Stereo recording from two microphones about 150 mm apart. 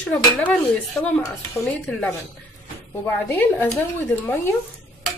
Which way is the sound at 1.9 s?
5° left (ahead or behind).